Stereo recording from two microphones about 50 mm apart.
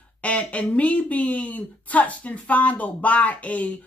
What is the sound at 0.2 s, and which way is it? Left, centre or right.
Speech, left.